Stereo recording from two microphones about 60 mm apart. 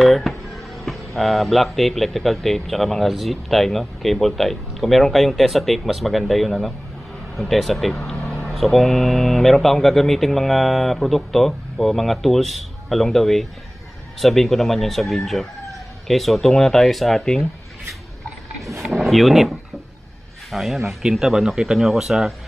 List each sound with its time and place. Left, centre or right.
0.0 s speech: centre
8.2 s vehicle: centre
8.5 s speech: centre
18.6 s drawer open or close: centre
20.5 s speech: centre